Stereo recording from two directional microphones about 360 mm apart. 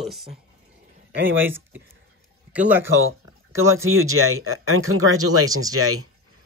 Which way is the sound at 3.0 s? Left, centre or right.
Right.